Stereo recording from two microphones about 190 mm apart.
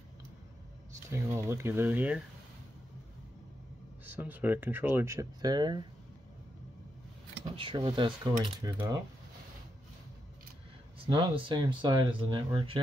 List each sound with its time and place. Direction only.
1.1 s speech: 15° right (ahead or behind)
4.0 s speech: 10° right (ahead or behind)
7.4 s speech: 25° right (ahead or behind)
11.1 s speech: 25° right (ahead or behind)